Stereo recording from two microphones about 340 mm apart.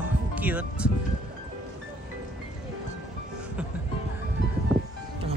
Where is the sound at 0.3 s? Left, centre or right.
Centre.